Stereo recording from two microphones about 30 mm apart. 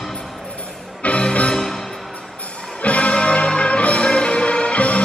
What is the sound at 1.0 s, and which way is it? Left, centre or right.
Music, left.